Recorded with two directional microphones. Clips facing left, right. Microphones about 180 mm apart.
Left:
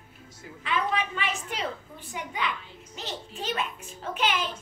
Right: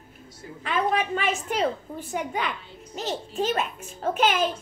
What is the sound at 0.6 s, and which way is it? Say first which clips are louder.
A child's voice: right 4 dB; 45° right (ahead or behind).